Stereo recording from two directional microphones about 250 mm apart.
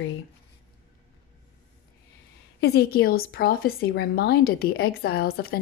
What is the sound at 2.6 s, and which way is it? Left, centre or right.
A woman's voice, left.